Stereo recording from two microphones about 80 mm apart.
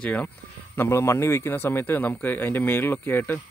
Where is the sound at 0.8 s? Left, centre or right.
Left.